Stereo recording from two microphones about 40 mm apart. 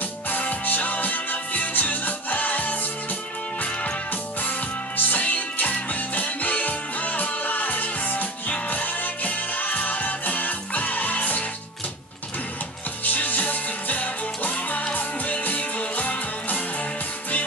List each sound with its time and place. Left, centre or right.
0.3 s music: left
13.0 s music: left